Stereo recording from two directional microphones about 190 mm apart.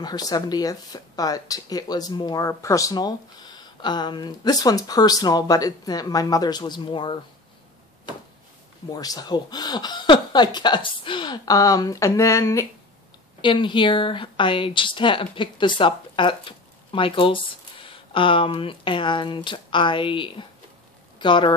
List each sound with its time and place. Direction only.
0.0 s speech: 20° left (ahead or behind)
8.9 s speech: 20° left (ahead or behind)